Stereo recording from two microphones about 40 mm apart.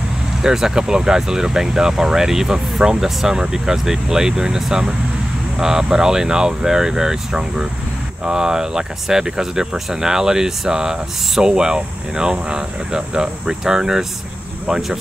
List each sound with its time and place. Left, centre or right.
0.4 s speech: centre